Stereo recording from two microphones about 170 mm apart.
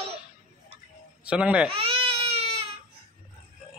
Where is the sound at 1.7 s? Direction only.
35° right (ahead or behind).